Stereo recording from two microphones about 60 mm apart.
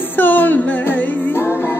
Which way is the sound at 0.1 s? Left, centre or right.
Left.